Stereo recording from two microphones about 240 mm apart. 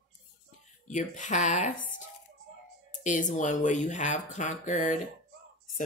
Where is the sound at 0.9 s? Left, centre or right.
Left.